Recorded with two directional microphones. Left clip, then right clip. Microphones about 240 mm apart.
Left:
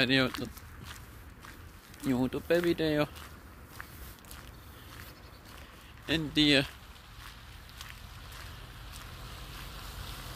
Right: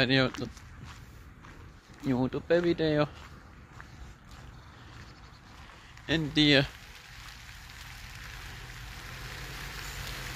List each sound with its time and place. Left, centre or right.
0.0 s speech: centre
2.0 s speech: centre
6.0 s speech: centre
9.1 s boat: right